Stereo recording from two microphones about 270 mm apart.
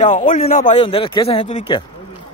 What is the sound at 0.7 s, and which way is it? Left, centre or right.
Speech, centre.